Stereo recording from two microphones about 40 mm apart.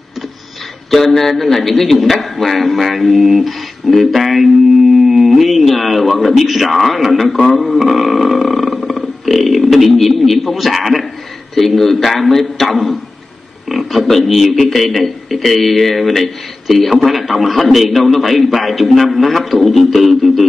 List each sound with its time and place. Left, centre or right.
0.8 s a man's voice: centre
13.7 s a sound: centre
14.0 s a man's voice: centre